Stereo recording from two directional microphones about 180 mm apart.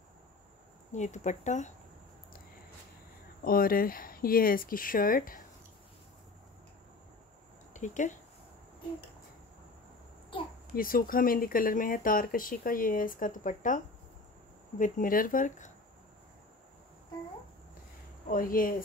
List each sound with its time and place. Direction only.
0.9 s speech: 40° left (ahead or behind)
3.4 s speech: 55° left (ahead or behind)
7.7 s speech: 45° left (ahead or behind)
10.8 s speech: 50° left (ahead or behind)
14.8 s speech: 50° left (ahead or behind)
18.3 s speech: 50° left (ahead or behind)